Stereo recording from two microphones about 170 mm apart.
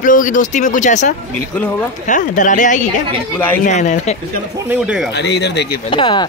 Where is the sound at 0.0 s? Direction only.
50° left (ahead or behind).